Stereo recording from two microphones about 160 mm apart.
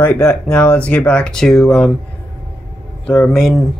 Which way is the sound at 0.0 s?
5° left (ahead or behind).